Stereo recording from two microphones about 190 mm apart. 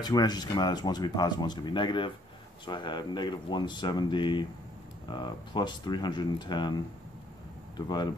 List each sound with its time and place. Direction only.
0.0 s speech: 20° left (ahead or behind)